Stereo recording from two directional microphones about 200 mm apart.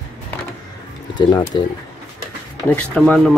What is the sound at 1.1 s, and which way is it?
Speech, 20° left (ahead or behind).